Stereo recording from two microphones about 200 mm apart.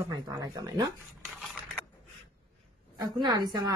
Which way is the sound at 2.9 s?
20° right (ahead or behind).